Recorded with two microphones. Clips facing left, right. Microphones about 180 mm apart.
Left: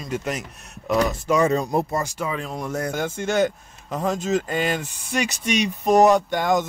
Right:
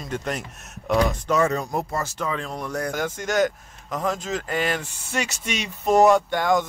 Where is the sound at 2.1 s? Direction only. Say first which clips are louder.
Left 1 dB; 10° left (ahead or behind).